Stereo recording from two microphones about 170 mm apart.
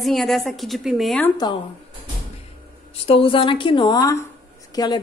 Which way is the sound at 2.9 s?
35° left (ahead or behind).